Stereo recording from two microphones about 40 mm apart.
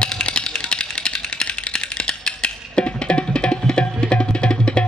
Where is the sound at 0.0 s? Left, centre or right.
Left.